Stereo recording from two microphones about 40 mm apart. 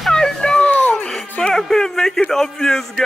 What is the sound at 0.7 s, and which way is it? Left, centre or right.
Music, left.